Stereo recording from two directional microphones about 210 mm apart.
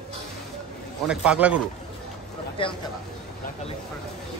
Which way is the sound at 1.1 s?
5° right (ahead or behind).